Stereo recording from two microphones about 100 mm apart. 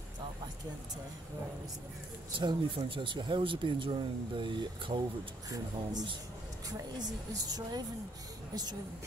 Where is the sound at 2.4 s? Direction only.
55° right (ahead or behind).